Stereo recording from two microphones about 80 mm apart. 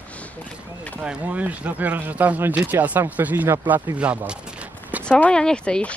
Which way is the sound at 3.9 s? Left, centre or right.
Centre.